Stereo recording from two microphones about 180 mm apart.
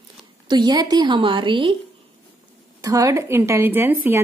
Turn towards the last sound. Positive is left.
turn(degrees=-10)  # may be behind; listen again after turning